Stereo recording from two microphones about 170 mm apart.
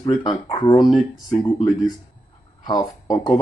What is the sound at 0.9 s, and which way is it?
Speech, centre (ahead or behind).